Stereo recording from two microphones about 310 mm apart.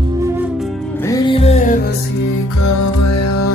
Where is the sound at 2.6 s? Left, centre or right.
Left.